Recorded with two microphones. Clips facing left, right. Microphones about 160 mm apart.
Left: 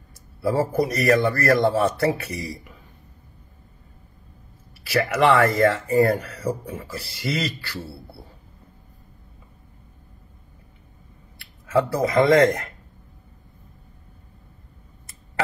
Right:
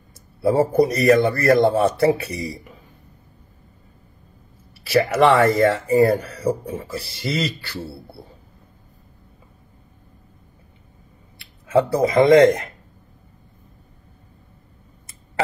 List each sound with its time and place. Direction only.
0.4 s speech: 25° right (ahead or behind)
4.8 s speech: 25° right (ahead or behind)
11.3 s speech: 20° right (ahead or behind)